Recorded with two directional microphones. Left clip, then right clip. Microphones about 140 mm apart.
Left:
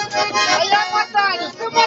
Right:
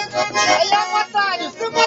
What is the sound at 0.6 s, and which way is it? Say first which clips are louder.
Music: even; 5° right (ahead or behind).